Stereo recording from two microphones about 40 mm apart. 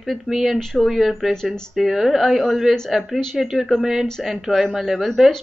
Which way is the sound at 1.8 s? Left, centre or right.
Centre.